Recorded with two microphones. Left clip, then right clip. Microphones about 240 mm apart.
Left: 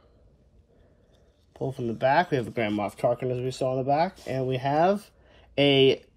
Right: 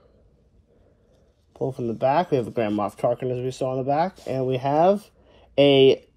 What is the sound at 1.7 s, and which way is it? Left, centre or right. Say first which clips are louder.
Speech: right 1 dB; centre.